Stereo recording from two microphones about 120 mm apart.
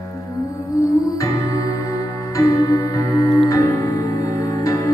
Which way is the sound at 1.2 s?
30° left (ahead or behind).